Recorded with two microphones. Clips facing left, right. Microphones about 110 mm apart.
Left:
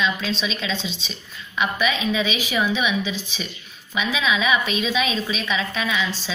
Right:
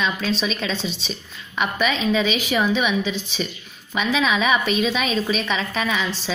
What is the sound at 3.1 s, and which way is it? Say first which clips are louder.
A woman's voice: right 4 dB; 50° right (ahead or behind).